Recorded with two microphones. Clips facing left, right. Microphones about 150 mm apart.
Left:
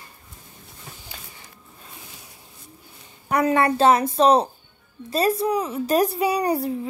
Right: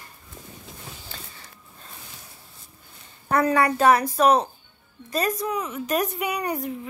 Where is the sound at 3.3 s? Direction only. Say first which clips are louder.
Left 1 dB; 20° left (ahead or behind).